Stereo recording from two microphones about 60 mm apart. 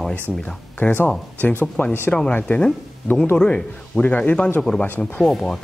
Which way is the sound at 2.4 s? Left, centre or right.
Centre.